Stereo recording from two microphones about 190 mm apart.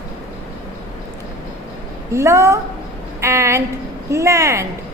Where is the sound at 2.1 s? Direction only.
15° right (ahead or behind).